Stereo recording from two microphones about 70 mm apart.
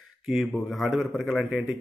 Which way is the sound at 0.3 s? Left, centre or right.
Centre.